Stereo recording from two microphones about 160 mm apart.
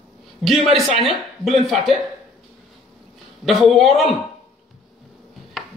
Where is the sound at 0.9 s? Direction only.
30° left (ahead or behind).